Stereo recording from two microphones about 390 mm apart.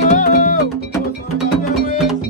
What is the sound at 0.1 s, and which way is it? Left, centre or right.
Music, centre.